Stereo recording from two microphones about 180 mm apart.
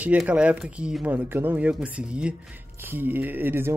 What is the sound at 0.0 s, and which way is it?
Speech, 10° right (ahead or behind).